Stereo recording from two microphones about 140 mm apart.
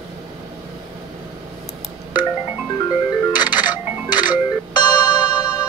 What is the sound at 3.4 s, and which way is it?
Music, 30° left (ahead or behind).